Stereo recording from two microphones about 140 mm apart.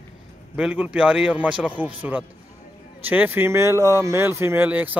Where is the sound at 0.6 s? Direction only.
10° right (ahead or behind).